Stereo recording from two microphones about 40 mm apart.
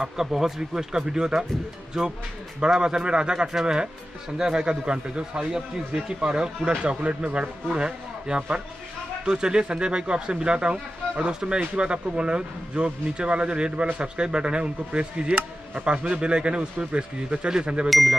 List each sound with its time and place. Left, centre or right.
0.0 s speech: centre
2.6 s speech: centre
17.8 s speech: centre